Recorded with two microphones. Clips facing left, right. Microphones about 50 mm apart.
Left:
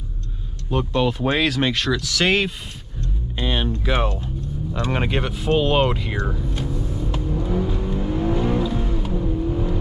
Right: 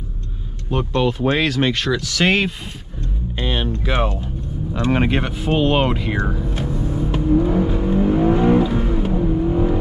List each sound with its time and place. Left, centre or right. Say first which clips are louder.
0.7 s speech: right 1 dB; centre
3.0 s music: right 1 dB; centre
4.7 s vehicle: right 5 dB; centre